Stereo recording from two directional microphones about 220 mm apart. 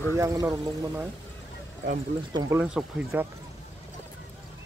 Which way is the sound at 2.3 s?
20° right (ahead or behind).